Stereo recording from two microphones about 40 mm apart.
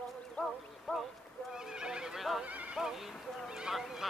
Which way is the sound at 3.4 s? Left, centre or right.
Centre.